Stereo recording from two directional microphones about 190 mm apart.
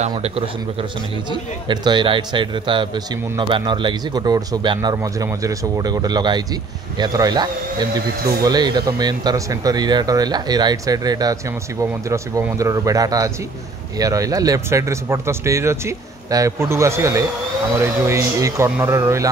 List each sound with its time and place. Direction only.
1.3 s a man's voice: 25° right (ahead or behind)
8.5 s a man's voice: 20° right (ahead or behind)